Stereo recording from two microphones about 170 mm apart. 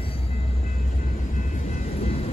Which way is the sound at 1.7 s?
40° left (ahead or behind).